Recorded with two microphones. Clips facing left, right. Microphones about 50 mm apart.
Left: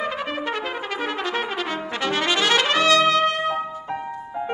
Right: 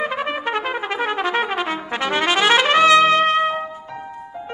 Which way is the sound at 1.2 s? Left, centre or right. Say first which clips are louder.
Right 5 dB; centre.